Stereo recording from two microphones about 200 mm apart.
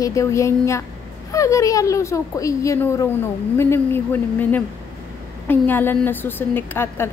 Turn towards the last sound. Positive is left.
turn(degrees=10)  # may be behind; listen again after turning